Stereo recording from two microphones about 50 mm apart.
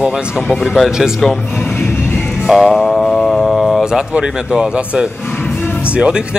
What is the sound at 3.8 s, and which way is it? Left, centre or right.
A man's voice, centre.